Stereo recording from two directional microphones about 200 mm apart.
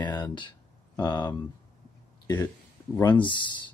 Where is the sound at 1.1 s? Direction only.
20° left (ahead or behind).